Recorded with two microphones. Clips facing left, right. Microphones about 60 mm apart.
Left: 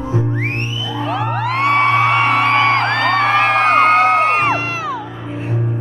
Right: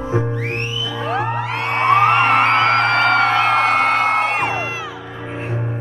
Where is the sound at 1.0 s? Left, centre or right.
Right.